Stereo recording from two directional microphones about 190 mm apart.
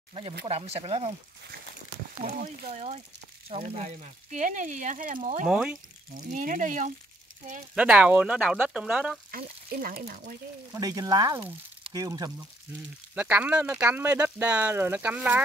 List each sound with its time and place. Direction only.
0.5 s speech: 30° right (ahead or behind)
2.4 s speech: 45° right (ahead or behind)
3.4 s speech: 30° right (ahead or behind)
5.5 s speech: 5° right (ahead or behind)
6.1 s speech: 45° right (ahead or behind)
7.7 s speech: 5° right (ahead or behind)
9.3 s speech: 50° right (ahead or behind)
10.7 s speech: 20° right (ahead or behind)
13.1 s speech: 10° right (ahead or behind)